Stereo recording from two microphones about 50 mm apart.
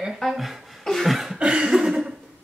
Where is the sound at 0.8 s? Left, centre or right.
Centre.